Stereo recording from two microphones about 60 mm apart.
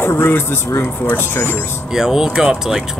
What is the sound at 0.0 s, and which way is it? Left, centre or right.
Speech, left.